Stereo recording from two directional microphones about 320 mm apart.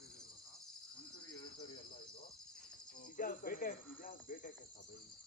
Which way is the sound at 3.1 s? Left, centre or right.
Left.